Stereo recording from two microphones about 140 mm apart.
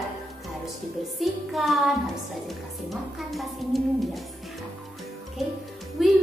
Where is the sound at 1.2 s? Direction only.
Centre (ahead or behind).